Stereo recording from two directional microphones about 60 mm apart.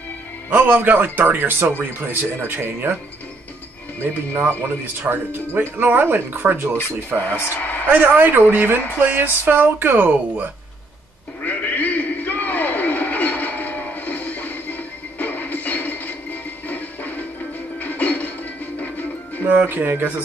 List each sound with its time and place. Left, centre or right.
0.5 s speech: right
4.0 s speech: right
7.1 s speech: centre
7.9 s speech: right
11.4 s a sound: left
17.7 s music: left
19.7 s speech: right